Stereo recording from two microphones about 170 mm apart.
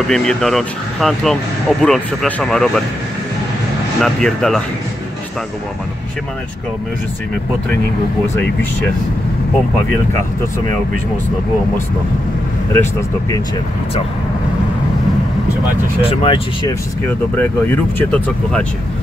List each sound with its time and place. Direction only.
0.1 s speech: 5° left (ahead or behind)
4.0 s speech: 5° left (ahead or behind)
16.0 s speech: 35° left (ahead or behind)
17.0 s speech: 10° left (ahead or behind)